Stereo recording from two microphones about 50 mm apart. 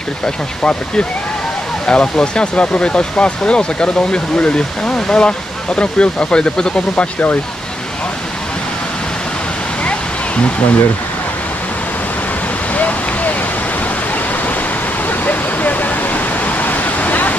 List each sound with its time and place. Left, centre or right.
0.6 s speech: left
9.8 s waterfall: left
12.7 s a sound: left
15.0 s vehicle: left